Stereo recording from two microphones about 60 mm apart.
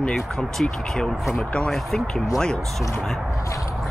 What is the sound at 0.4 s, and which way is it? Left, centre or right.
Speech, centre.